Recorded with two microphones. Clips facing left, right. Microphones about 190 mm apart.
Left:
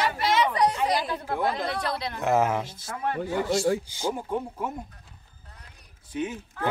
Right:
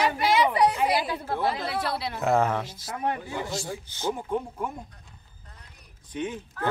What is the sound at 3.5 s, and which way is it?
Speech, 75° left (ahead or behind).